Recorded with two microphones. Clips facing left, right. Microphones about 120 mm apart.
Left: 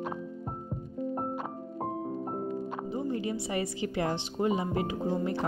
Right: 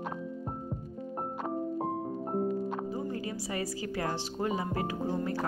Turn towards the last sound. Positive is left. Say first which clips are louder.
# left 2 dB
turn(degrees=20)  # may be behind; listen again after turning